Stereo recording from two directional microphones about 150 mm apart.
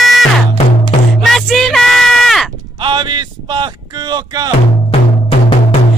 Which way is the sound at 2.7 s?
30° right (ahead or behind).